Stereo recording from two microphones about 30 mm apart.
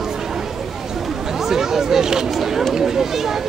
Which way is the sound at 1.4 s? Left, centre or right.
Centre.